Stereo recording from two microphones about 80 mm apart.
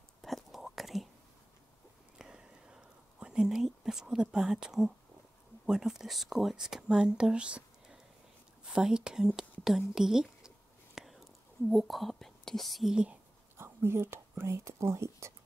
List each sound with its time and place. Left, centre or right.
0.2 s whispering: centre
2.1 s whispering: centre
5.7 s speech: centre
11.0 s whispering: centre
12.9 s speech: centre
13.6 s speech: right